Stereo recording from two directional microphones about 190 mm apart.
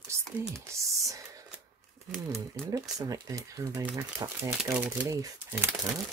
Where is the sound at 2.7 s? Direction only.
20° right (ahead or behind).